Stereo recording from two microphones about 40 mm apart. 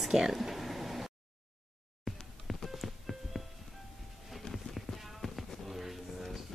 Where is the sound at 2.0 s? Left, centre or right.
Centre.